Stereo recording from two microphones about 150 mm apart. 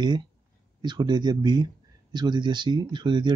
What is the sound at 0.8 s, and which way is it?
Speech, 30° right (ahead or behind).